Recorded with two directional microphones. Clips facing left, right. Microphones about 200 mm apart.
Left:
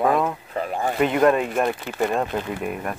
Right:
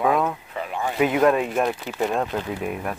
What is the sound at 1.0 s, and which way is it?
Speech, centre (ahead or behind).